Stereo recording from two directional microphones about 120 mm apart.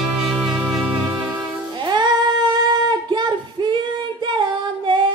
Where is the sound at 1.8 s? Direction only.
40° right (ahead or behind).